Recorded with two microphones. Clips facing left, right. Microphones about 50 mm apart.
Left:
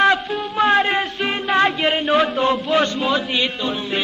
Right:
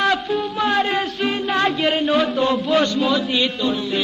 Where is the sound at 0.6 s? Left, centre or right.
Left.